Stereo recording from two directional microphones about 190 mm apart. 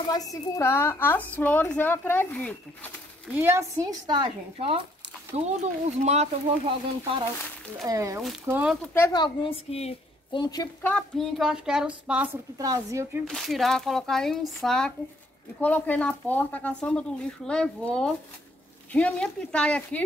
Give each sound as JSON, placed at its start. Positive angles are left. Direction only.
{"t": 0.1, "sound": "a woman's voice", "side_deg": 20}
{"t": 3.3, "sound": "speech", "side_deg": -10}
{"t": 7.8, "sound": "speech", "side_deg": -15}
{"t": 8.9, "sound": "a woman's voice", "side_deg": 20}
{"t": 10.8, "sound": "speech", "side_deg": 5}
{"t": 12.5, "sound": "speech", "side_deg": -20}
{"t": 13.3, "sound": "a woman's voice", "side_deg": 0}